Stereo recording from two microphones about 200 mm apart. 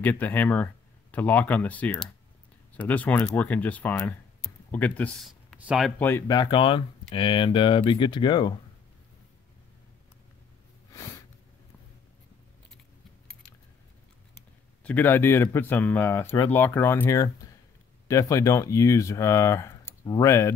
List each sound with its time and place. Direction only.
0.0 s speech: 10° left (ahead or behind)
6.0 s speech: 15° left (ahead or behind)
10.9 s a sound: 15° left (ahead or behind)
14.8 s speech: 10° left (ahead or behind)